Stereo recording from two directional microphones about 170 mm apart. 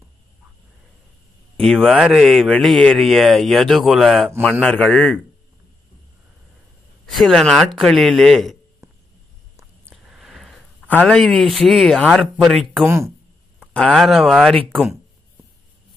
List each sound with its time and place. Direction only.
1.6 s a man's voice: centre (ahead or behind)
7.2 s speech: centre (ahead or behind)
8.8 s a sound: 15° right (ahead or behind)
10.0 s speech: centre (ahead or behind)
12.8 s speech: 15° right (ahead or behind)
13.6 s speech: 5° left (ahead or behind)